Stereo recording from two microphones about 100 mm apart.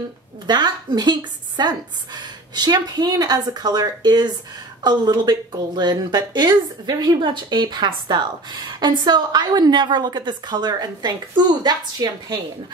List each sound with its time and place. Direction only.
0.5 s a woman's voice: 45° right (ahead or behind)